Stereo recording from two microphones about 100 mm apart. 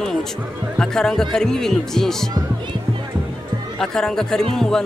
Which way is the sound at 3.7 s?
5° left (ahead or behind).